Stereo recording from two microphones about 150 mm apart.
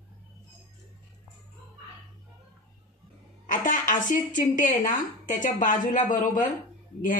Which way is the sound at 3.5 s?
60° left (ahead or behind).